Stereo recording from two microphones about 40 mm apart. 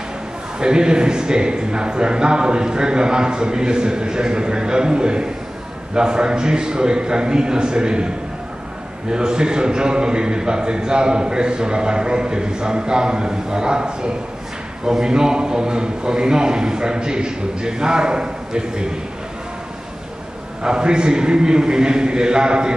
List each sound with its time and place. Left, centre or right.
0.6 s a man's voice: right
9.1 s a man's voice: right
20.6 s a man's voice: right